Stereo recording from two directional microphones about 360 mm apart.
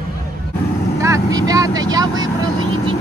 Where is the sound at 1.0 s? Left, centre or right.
Centre.